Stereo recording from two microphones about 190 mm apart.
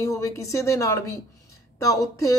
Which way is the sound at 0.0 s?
15° left (ahead or behind).